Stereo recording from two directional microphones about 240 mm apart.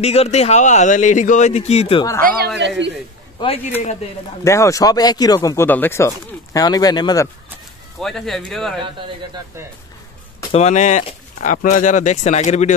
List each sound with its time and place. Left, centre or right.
0.0 s a man's voice: left
2.2 s a man's voice: right
3.3 s a man's voice: left
4.5 s speech: centre
8.0 s speech: centre
10.5 s speech: left